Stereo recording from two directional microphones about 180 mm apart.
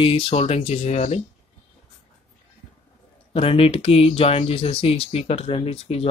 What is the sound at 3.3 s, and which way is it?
Speech, 30° left (ahead or behind).